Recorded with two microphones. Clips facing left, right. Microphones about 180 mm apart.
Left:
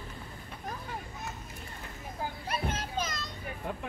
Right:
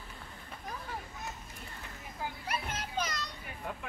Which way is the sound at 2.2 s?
45° left (ahead or behind).